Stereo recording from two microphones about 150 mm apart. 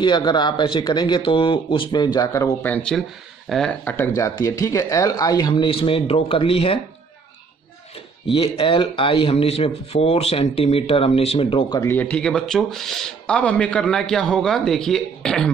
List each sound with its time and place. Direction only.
0.0 s speech: 30° left (ahead or behind)
2.6 s speech: 10° left (ahead or behind); by 6.8 s 40° left (ahead or behind)
8.3 s speech: 35° left (ahead or behind)
11.8 s speech: 10° left (ahead or behind)